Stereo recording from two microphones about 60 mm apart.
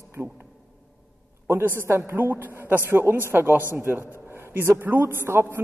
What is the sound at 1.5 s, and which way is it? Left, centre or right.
A man's voice, right.